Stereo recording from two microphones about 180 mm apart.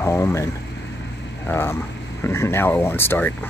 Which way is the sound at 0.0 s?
15° left (ahead or behind).